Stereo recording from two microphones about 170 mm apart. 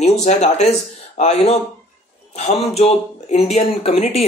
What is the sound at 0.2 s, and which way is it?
Speech, 40° left (ahead or behind).